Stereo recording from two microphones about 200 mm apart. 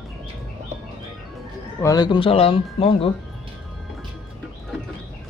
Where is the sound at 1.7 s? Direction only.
20° left (ahead or behind).